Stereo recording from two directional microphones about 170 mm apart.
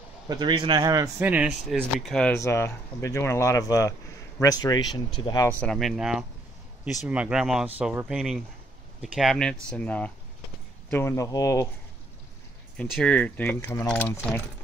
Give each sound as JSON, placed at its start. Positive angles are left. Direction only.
{"t": 0.3, "sound": "speech", "side_deg": -25}
{"t": 1.2, "sound": "speech", "side_deg": -10}
{"t": 1.8, "sound": "speech", "side_deg": 5}
{"t": 2.3, "sound": "speech", "side_deg": 15}
{"t": 5.5, "sound": "speech", "side_deg": 5}
{"t": 7.8, "sound": "speech", "side_deg": -15}
{"t": 8.1, "sound": "speech", "side_deg": 0}
{"t": 12.7, "sound": "speech", "side_deg": 5}